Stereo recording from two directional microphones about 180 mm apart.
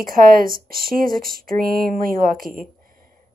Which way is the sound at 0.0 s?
50° right (ahead or behind).